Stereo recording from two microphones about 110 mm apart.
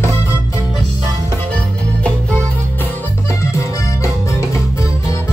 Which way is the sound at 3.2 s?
25° left (ahead or behind).